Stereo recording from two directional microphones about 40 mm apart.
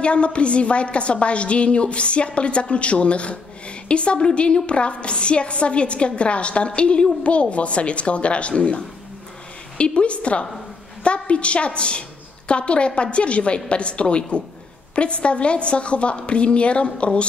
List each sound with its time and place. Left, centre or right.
0.0 s a woman's voice: left